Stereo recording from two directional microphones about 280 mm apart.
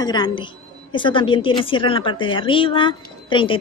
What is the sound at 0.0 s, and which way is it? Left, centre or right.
A woman's voice, centre.